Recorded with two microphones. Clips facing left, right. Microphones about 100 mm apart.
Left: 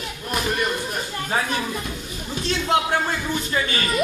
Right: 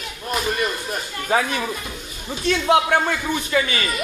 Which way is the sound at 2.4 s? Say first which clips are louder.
Right 4 dB; 60° right (ahead or behind).